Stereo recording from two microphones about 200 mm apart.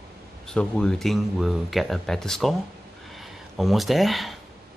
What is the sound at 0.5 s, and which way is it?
Speech, 5° left (ahead or behind).